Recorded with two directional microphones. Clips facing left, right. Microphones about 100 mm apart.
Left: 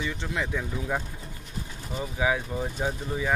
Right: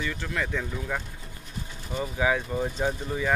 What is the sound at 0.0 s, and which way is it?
Speech, 15° left (ahead or behind).